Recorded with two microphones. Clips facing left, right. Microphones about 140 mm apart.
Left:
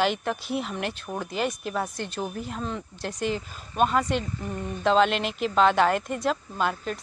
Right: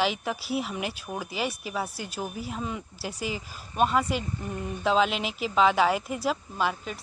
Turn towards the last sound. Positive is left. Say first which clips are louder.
# left 2 dB
turn(degrees=-5)  # may be behind; listen again after turning